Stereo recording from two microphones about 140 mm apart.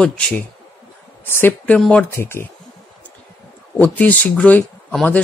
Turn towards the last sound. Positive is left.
turn(degrees=10)  # may be behind; listen again after turning